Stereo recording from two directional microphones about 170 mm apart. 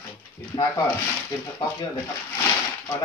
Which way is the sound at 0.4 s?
15° left (ahead or behind).